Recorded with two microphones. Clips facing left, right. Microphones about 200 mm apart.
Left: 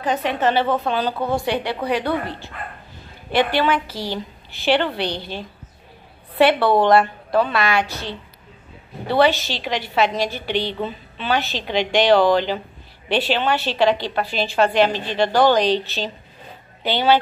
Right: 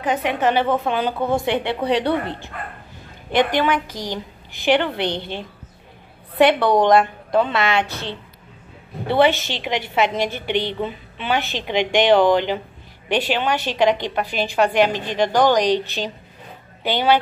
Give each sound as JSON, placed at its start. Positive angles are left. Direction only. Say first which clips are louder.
{"t": 0.0, "sound": "a woman's voice", "louder": "even", "side_deg": -15}